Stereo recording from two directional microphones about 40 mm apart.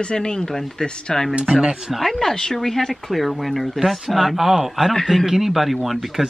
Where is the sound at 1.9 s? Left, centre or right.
Centre.